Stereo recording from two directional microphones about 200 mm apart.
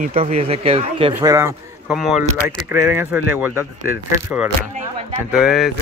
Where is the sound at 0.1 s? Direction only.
30° right (ahead or behind).